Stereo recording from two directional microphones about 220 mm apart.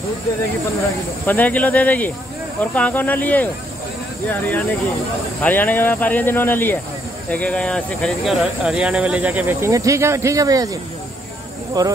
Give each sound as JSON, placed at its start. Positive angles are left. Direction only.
{"t": 1.2, "sound": "speech", "side_deg": 5}